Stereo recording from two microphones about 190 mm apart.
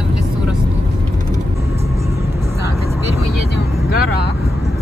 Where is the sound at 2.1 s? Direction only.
15° right (ahead or behind).